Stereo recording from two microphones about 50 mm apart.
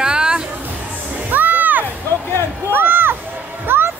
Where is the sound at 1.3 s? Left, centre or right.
Right.